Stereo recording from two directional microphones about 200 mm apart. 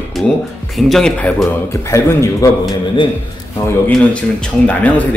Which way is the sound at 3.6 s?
5° left (ahead or behind).